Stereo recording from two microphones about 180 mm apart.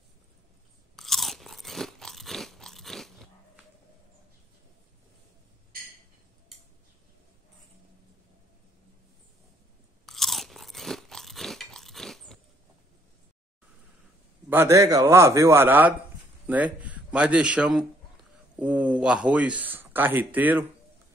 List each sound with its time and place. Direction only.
0.9 s crunch: centre (ahead or behind)
10.0 s crunch: centre (ahead or behind)
14.5 s a man's voice: 15° right (ahead or behind)